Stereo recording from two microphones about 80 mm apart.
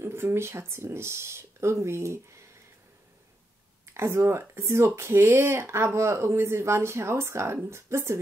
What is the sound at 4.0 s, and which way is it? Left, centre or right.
Speech, right.